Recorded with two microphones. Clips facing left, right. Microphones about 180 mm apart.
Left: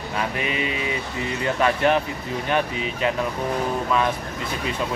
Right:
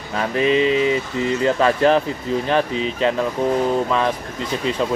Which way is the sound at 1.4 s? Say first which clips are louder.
Right 4 dB; 35° right (ahead or behind).